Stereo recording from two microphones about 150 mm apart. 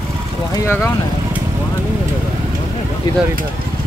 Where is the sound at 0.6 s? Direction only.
15° left (ahead or behind).